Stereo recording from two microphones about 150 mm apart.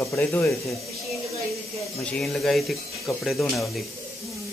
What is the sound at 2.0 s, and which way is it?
Speech, 5° left (ahead or behind).